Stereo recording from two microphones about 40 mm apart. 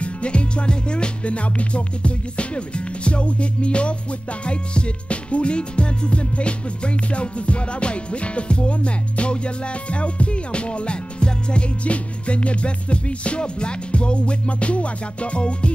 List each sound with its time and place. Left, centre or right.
0.0 s music: left